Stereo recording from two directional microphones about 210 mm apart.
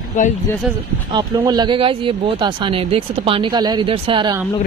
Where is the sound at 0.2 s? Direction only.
40° left (ahead or behind).